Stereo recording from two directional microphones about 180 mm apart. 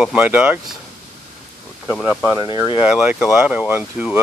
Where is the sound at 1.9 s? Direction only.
5° right (ahead or behind).